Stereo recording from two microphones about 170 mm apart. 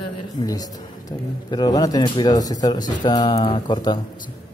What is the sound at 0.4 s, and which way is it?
Speech, 20° left (ahead or behind).